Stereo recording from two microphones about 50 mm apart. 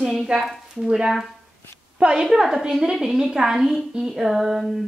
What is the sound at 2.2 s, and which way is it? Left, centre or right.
A woman's voice, centre.